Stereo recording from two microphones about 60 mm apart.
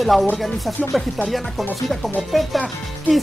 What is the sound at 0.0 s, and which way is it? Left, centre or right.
Speech, centre.